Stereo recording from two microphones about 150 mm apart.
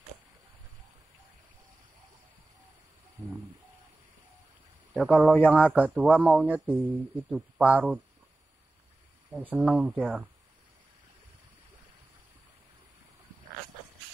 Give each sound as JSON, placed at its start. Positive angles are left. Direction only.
{"t": 4.9, "sound": "speech", "side_deg": -5}
{"t": 9.5, "sound": "speech", "side_deg": -10}